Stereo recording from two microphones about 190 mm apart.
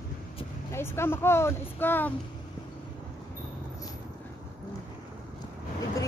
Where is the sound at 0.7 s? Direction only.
15° left (ahead or behind).